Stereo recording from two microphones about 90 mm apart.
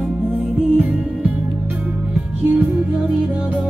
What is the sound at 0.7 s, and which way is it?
Music, 20° right (ahead or behind).